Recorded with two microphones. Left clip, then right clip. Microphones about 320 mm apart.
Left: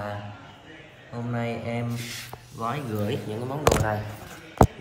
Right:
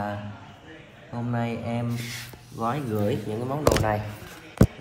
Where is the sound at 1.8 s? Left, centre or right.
Right.